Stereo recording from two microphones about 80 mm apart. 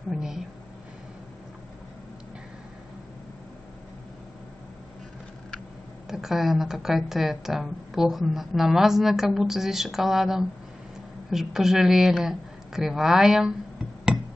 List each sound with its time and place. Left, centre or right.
0.1 s speech: centre
6.0 s a woman's voice: centre